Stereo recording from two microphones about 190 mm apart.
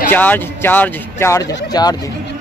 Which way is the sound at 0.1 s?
10° left (ahead or behind).